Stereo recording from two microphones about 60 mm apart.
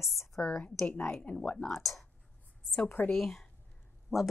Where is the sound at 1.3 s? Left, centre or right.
Left.